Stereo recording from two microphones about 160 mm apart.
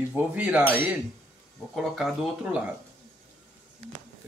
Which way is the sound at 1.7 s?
Centre (ahead or behind).